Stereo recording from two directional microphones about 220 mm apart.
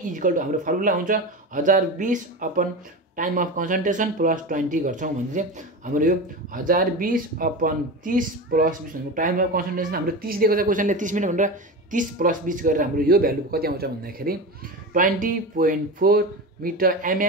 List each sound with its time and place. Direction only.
0.1 s speech: 35° right (ahead or behind)